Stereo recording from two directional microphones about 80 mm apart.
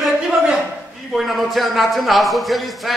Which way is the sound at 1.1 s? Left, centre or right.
Centre.